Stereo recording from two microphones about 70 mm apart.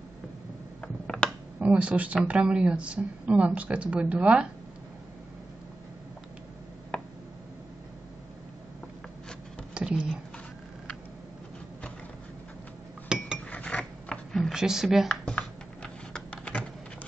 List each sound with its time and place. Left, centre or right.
0.7 s mechanisms: centre
1.6 s speech: centre
6.9 s tick: centre
9.8 s a sound: centre
13.1 s cutlery: centre
13.5 s pulleys: centre
14.5 s speech: centre
15.2 s computer keyboard: centre